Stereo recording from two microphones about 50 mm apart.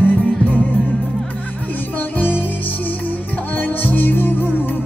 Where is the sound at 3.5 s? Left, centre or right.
Left.